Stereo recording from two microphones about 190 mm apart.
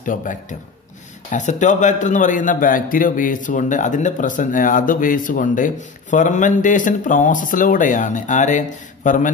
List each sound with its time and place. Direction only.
0.0 s a man's voice: 45° left (ahead or behind)